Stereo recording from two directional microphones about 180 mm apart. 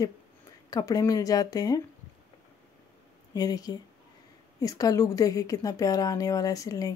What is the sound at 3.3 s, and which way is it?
A woman's voice, 20° left (ahead or behind).